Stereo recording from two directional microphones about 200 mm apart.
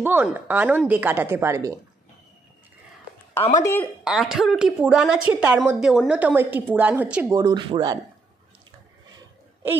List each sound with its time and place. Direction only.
0.0 s a woman's voice: 10° right (ahead or behind)
3.6 s speech: 10° left (ahead or behind)
4.0 s a woman's voice: centre (ahead or behind)
7.3 s speech: 20° right (ahead or behind)